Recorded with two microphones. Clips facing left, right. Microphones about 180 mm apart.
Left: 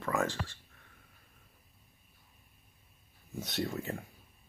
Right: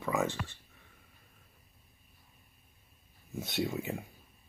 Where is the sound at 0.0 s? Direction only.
5° right (ahead or behind).